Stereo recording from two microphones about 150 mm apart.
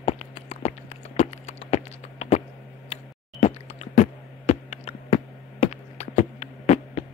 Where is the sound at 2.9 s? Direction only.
45° left (ahead or behind).